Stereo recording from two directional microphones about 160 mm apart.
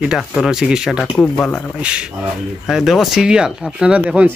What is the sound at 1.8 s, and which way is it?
Speech, 5° right (ahead or behind).